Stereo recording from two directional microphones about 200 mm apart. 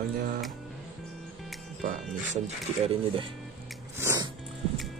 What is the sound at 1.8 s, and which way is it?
Speech, 35° right (ahead or behind).